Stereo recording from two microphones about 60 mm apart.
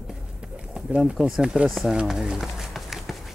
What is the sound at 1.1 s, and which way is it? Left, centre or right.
Speech, centre.